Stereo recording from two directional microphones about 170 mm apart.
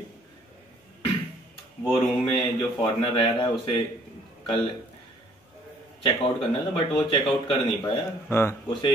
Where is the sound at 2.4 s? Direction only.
25° left (ahead or behind).